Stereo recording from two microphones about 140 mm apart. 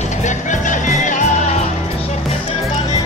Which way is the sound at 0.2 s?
60° left (ahead or behind).